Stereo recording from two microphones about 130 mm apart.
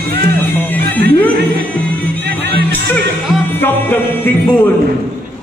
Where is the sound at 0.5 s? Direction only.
15° left (ahead or behind).